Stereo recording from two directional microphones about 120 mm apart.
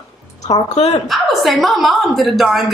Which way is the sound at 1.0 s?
Centre (ahead or behind).